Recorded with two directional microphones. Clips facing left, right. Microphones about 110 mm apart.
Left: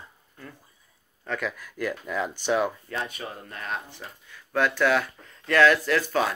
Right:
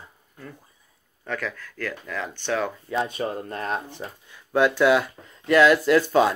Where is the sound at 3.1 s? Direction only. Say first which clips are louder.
Right 9 dB; 35° right (ahead or behind).